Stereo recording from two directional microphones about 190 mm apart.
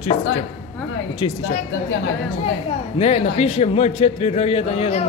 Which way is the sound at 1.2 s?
25° left (ahead or behind).